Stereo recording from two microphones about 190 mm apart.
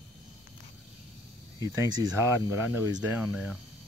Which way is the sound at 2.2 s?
15° right (ahead or behind).